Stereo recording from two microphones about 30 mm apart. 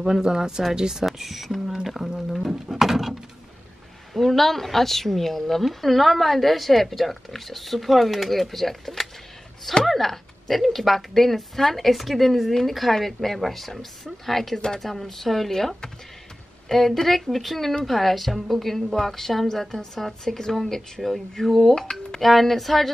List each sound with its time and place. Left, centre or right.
0.2 s speech: right
1.0 s a woman's voice: centre
4.1 s a woman's voice: centre
12.9 s a woman's voice: centre
14.6 s a woman's voice: centre
16.7 s a woman's voice: centre